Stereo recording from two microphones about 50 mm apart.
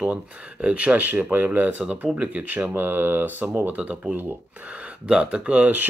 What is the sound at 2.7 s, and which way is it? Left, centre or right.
Speech, right.